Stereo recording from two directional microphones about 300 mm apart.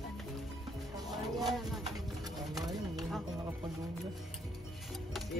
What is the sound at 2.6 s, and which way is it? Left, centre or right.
Speech, centre.